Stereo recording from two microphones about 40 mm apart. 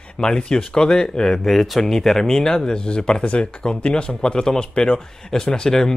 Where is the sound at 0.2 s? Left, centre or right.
Centre.